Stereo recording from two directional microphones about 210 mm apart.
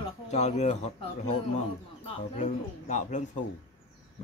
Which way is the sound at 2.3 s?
35° left (ahead or behind).